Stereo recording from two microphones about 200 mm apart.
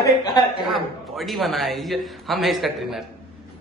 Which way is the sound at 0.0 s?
20° left (ahead or behind).